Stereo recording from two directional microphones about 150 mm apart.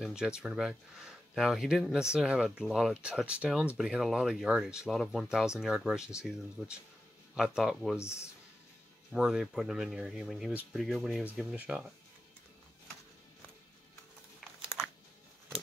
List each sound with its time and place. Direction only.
0.0 s speech: 5° right (ahead or behind)
9.1 s speech: 5° right (ahead or behind)
14.4 s crumpling: 5° left (ahead or behind)